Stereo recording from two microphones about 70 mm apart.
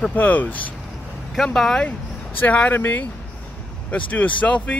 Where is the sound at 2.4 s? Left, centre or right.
Left.